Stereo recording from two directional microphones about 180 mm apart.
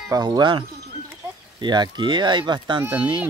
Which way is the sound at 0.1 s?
20° right (ahead or behind).